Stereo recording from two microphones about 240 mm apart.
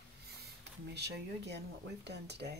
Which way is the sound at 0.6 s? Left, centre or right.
Right.